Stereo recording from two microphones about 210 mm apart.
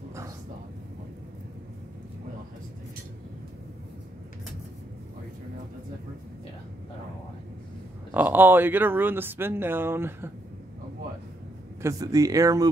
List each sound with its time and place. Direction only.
8.1 s speech: 10° right (ahead or behind)
11.8 s speech: 15° right (ahead or behind)